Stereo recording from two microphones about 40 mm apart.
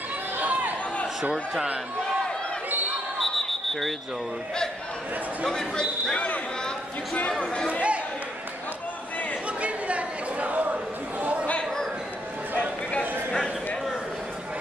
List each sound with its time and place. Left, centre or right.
0.4 s chatter: right
3.2 s a sound: centre
5.5 s speech: centre
6.1 s speech: left
7.2 s speech: left
9.6 s a sound: right